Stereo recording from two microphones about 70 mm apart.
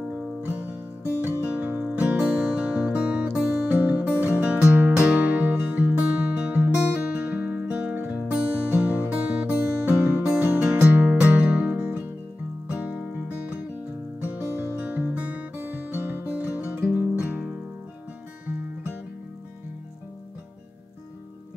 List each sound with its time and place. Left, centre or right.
0.0 s music: centre
14.4 s music: right
14.8 s music: right
15.6 s music: right